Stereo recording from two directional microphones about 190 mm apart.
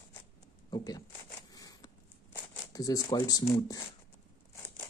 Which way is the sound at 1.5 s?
20° left (ahead or behind).